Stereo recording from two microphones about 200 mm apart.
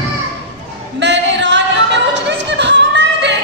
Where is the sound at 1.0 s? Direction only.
60° right (ahead or behind).